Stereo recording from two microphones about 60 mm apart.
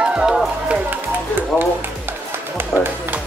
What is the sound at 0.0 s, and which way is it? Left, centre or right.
Music, centre.